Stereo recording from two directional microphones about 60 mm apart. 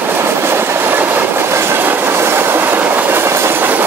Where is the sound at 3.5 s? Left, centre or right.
Right.